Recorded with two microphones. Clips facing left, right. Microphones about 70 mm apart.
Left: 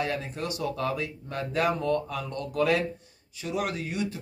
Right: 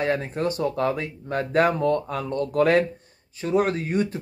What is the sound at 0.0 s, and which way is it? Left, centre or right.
Speech, right.